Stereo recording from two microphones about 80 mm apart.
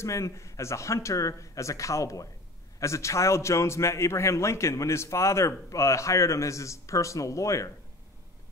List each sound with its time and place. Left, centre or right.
0.0 s a man's voice: left